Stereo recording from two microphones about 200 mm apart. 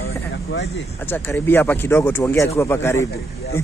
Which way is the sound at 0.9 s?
10° left (ahead or behind).